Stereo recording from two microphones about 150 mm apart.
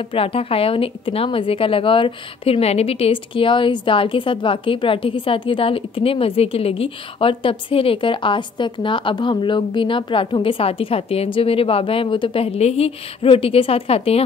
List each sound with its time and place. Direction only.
0.0 s a woman's voice: 40° left (ahead or behind)